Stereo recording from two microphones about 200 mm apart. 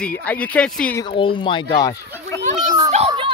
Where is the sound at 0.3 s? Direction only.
5° left (ahead or behind).